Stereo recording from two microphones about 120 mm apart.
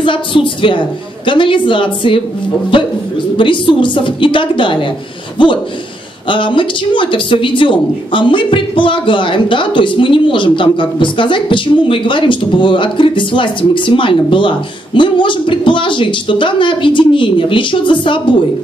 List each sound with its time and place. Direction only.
0.0 s speech: 45° left (ahead or behind)